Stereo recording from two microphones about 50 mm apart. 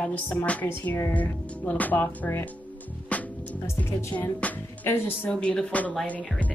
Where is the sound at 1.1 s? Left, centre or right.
Left.